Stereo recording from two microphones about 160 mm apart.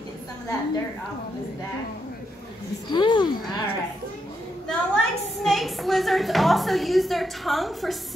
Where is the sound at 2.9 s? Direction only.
30° left (ahead or behind).